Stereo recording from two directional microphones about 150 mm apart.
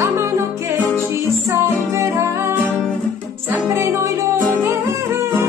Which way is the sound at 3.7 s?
20° right (ahead or behind).